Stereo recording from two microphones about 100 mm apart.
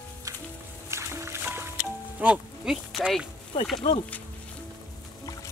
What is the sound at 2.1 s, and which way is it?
Speech, 15° right (ahead or behind).